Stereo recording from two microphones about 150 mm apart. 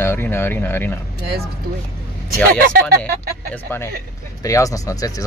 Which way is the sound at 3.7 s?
15° left (ahead or behind).